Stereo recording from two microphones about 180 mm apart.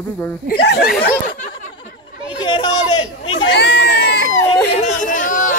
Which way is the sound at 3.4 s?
70° left (ahead or behind).